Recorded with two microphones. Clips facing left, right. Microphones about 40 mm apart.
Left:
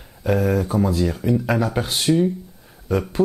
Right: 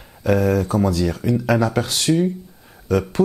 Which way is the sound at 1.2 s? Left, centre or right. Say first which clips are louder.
Left 1 dB; right.